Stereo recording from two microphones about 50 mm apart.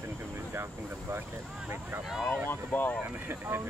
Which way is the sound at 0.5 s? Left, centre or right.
Right.